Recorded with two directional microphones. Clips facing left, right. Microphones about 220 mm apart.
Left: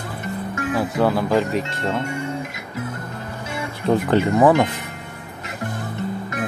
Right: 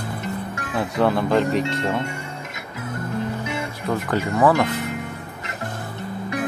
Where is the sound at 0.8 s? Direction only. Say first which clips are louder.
Right 1 dB; 5° left (ahead or behind).